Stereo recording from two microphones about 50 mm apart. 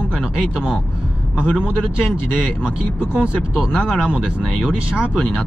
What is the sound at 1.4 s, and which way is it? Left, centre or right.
Speech, centre.